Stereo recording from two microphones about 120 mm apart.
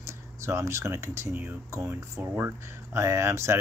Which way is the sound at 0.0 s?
25° right (ahead or behind).